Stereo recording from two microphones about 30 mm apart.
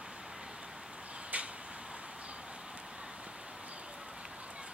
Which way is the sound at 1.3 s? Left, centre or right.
Right.